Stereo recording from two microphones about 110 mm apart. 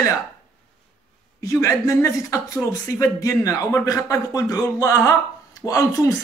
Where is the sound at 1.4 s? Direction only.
25° left (ahead or behind).